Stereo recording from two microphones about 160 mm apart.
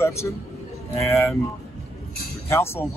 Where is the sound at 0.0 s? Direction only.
15° left (ahead or behind).